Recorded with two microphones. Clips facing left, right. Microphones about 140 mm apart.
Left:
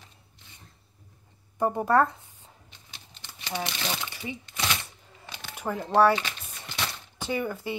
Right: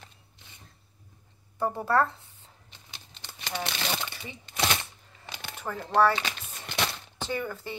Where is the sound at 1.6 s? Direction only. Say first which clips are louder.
Left 3 dB; 15° left (ahead or behind).